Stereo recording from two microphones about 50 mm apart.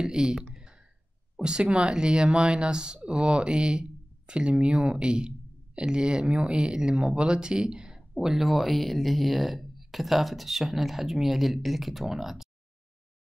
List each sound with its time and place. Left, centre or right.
0.0 s speech: centre
8.1 s speech: centre